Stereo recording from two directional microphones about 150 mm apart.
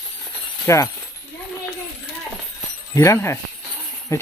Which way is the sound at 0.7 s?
20° left (ahead or behind).